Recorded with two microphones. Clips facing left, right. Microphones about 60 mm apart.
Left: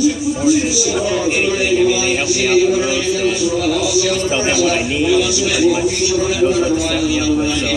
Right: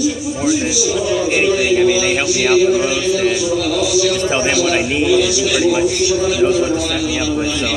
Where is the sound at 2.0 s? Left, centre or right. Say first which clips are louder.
Right 1 dB; right.